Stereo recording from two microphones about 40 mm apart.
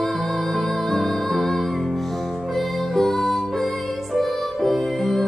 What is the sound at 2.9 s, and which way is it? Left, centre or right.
Music, centre.